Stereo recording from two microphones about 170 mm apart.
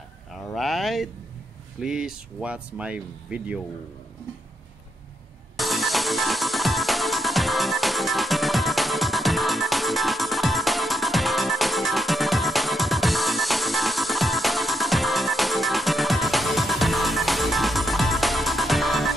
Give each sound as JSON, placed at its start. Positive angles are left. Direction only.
{"t": 0.3, "sound": "a sound", "side_deg": 0}
{"t": 1.8, "sound": "speech", "side_deg": -5}
{"t": 5.6, "sound": "music", "side_deg": 0}